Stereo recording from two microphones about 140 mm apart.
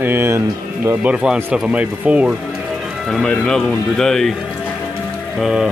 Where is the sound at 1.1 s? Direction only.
10° right (ahead or behind).